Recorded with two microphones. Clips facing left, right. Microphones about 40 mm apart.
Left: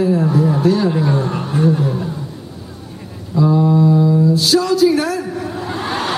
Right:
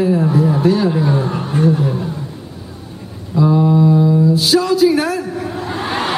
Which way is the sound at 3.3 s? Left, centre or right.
Centre.